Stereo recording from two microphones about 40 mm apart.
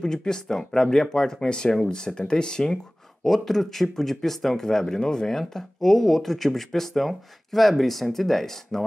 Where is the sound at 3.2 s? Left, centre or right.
Centre.